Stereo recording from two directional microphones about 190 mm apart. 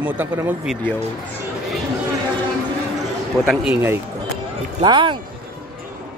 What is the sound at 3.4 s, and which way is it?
Speech, 5° right (ahead or behind).